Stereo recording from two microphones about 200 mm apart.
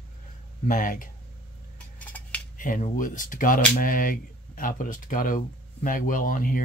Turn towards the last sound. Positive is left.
turn(degrees=45)  # may be behind; listen again after turning